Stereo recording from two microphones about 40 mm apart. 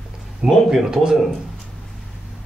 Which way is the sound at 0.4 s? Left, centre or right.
Centre.